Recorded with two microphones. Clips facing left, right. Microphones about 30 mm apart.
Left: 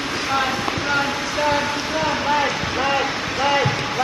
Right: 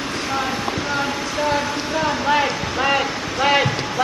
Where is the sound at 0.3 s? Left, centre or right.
Centre.